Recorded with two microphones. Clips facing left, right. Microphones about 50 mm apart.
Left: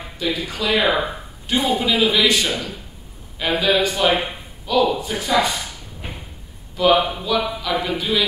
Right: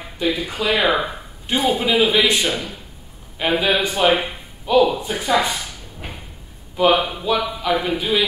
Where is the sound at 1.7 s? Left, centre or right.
Right.